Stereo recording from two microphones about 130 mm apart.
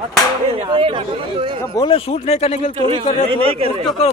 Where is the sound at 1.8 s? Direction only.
45° left (ahead or behind).